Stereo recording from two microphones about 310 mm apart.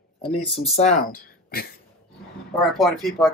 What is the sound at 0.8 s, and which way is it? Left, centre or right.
Speech, left.